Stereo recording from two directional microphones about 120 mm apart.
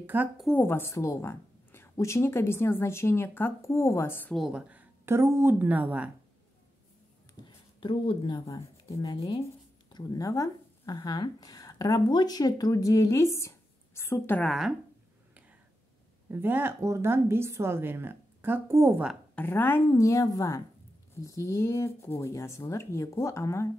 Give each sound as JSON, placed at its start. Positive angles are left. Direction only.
{"t": 0.0, "sound": "speech", "side_deg": -15}
{"t": 0.5, "sound": "a woman's voice", "side_deg": 15}
{"t": 4.3, "sound": "speech", "side_deg": -5}
{"t": 7.4, "sound": "speech", "side_deg": 45}
{"t": 8.5, "sound": "speech", "side_deg": 25}
{"t": 14.4, "sound": "speech", "side_deg": 0}
{"t": 16.3, "sound": "a woman's voice", "side_deg": -20}
{"t": 19.3, "sound": "speech", "side_deg": 15}
{"t": 19.9, "sound": "a woman's voice", "side_deg": 25}